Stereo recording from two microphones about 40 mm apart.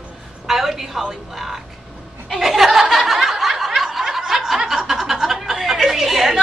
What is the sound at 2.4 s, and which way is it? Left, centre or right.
Snicker, centre.